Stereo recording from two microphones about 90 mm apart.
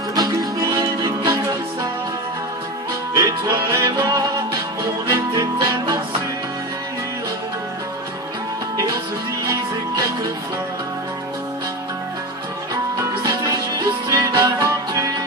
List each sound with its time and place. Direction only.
0.1 s music: 45° right (ahead or behind)
3.2 s music: 45° right (ahead or behind)
9.5 s music: 40° right (ahead or behind)
13.3 s music: 40° right (ahead or behind)